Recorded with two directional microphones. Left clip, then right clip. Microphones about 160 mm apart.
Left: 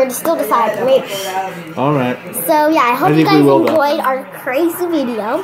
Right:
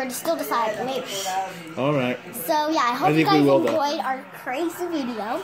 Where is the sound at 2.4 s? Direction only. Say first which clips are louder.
Left 10 dB; 15° left (ahead or behind).